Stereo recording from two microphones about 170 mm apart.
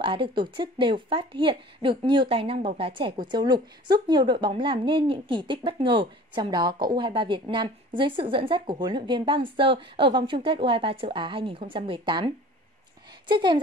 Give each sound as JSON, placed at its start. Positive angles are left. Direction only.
{"t": 0.0, "sound": "a woman's voice", "side_deg": -30}
{"t": 13.3, "sound": "a woman's voice", "side_deg": -30}